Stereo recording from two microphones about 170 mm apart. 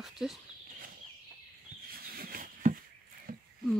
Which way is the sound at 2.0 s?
60° right (ahead or behind).